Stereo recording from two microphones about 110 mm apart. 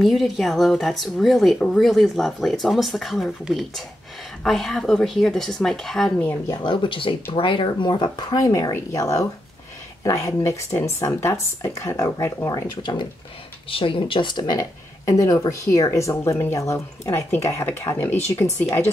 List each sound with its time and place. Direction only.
0.0 s speech: centre (ahead or behind)
6.4 s speech: 40° left (ahead or behind)
12.4 s speech: 40° left (ahead or behind)
13.7 s speech: 55° left (ahead or behind); by 18.1 s 15° left (ahead or behind)